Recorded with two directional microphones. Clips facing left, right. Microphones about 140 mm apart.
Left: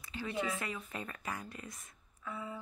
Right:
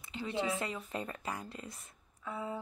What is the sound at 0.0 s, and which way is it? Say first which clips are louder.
Speech: right 2 dB; 25° right (ahead or behind).